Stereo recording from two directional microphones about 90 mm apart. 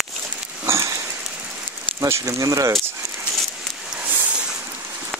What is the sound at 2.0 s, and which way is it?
Speech, 30° right (ahead or behind).